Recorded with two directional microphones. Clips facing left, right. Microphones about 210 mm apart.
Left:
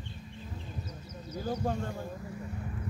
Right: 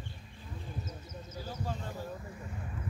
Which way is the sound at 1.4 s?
50° left (ahead or behind).